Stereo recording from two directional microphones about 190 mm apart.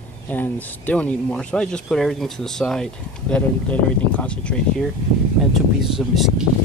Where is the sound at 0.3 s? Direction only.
10° left (ahead or behind).